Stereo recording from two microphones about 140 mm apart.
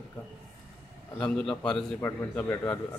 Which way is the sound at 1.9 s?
15° left (ahead or behind).